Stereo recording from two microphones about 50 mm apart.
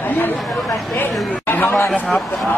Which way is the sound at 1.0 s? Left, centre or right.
Left.